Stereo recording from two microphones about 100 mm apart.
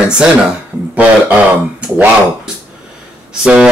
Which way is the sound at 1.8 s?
15° right (ahead or behind).